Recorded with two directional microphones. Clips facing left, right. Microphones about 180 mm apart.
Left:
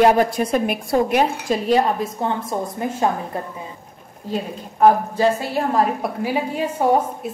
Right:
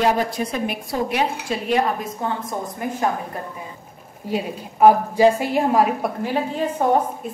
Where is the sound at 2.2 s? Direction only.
25° left (ahead or behind).